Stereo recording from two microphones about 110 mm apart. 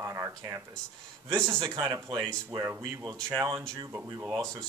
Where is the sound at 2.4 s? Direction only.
20° right (ahead or behind).